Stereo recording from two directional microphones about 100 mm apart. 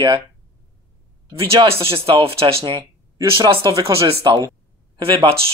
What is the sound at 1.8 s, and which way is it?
Speech, 70° right (ahead or behind).